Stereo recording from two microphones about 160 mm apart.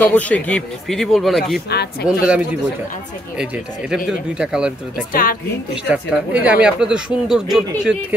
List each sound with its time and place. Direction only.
0.0 s speech: 10° left (ahead or behind)
1.7 s speech: 90° left
2.0 s a man's voice: 5° right (ahead or behind)
4.4 s speech: 5° right (ahead or behind)
5.1 s a woman's voice: 65° left (ahead or behind)
5.9 s speech: 5° right (ahead or behind)